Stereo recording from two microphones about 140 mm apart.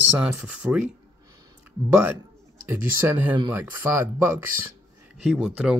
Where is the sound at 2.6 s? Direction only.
15° right (ahead or behind).